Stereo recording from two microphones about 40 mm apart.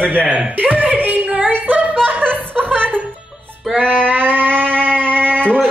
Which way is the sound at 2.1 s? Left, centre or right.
Right.